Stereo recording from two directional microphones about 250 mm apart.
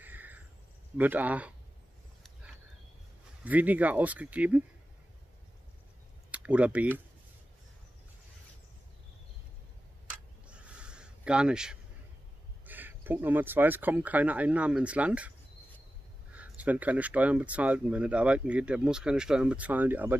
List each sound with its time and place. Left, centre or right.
0.0 s cricket: centre
0.9 s speech: centre
3.4 s speech: centre
6.3 s speech: centre
10.5 s a sound: centre
12.6 s speech: centre